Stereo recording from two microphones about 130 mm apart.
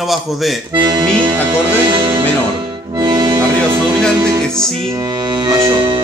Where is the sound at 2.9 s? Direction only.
35° right (ahead or behind).